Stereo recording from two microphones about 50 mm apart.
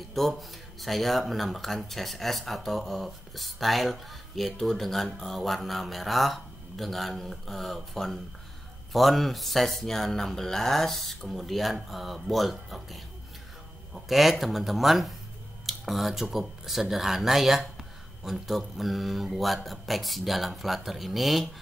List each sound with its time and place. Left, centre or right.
0.1 s speech: centre